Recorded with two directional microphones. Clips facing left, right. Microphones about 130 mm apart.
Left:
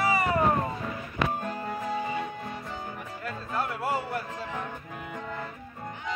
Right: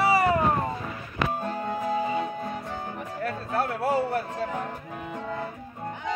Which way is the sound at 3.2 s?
60° right (ahead or behind).